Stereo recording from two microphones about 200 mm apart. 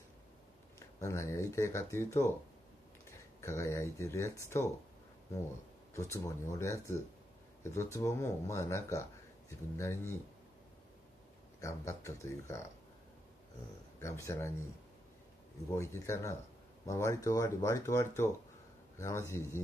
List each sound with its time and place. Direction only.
0.7 s speech: 15° left (ahead or behind)
3.3 s speech: 15° left (ahead or behind)
5.9 s speech: 15° left (ahead or behind)
11.6 s speech: 15° left (ahead or behind)
14.0 s speech: 15° left (ahead or behind)
15.8 s speech: 15° left (ahead or behind)